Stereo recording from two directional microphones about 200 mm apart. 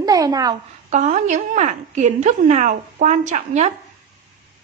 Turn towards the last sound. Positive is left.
turn(degrees=-35)  # may be behind; listen again after turning